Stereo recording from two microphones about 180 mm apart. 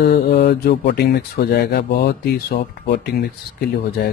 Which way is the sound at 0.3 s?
65° left (ahead or behind).